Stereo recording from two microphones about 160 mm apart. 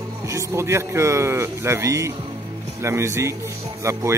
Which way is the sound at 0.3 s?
20° right (ahead or behind).